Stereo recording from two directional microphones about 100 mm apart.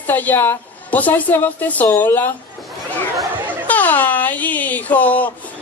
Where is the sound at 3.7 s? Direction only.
15° left (ahead or behind).